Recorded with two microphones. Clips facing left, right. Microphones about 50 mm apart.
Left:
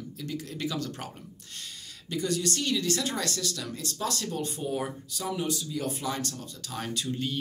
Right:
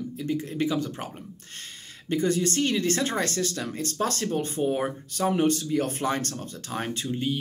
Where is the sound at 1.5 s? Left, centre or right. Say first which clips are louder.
Left 1 dB; right.